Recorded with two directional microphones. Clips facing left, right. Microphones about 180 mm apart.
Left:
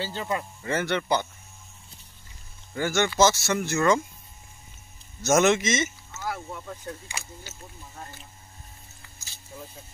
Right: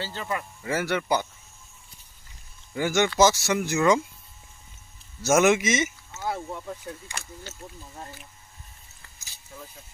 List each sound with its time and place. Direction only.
0.0 s speech: 15° left (ahead or behind)
0.7 s speech: 10° right (ahead or behind)
2.7 s speech: 15° right (ahead or behind)
5.2 s speech: 10° right (ahead or behind)
6.2 s speech: 25° right (ahead or behind)
7.1 s speech: 5° left (ahead or behind)